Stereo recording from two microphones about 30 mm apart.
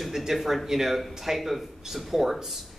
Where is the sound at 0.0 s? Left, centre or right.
Centre.